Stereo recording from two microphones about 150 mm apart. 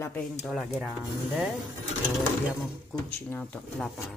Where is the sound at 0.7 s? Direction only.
Centre (ahead or behind).